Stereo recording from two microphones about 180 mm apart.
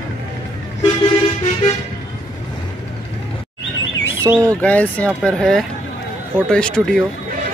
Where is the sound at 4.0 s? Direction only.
15° right (ahead or behind).